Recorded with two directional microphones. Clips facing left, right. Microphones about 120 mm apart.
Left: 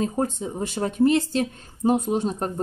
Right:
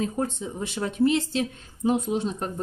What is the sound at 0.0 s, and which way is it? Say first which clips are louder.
Speech: left 3 dB; 40° left (ahead or behind).